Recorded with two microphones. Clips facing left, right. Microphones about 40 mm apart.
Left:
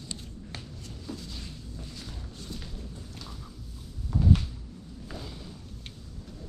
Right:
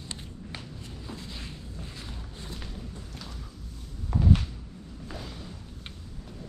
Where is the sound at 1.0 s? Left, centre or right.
Right.